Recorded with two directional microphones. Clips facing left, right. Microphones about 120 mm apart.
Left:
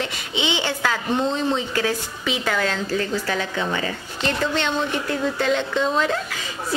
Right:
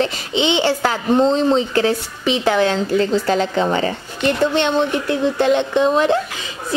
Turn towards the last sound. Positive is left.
turn(degrees=-20)  # may be behind; listen again after turning